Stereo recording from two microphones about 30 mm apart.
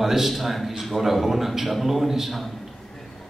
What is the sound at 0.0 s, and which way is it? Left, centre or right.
A man's voice, centre.